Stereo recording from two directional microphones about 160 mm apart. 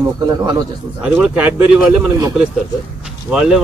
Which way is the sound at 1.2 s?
10° right (ahead or behind).